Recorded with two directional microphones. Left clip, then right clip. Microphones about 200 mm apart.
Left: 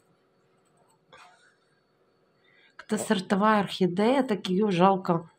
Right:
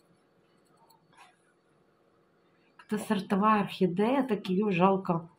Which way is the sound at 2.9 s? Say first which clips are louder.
Left 4 dB; 40° left (ahead or behind).